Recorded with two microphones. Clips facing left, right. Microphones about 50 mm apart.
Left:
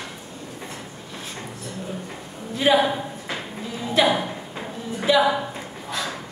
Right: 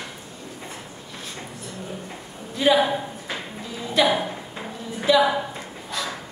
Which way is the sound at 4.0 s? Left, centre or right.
Centre.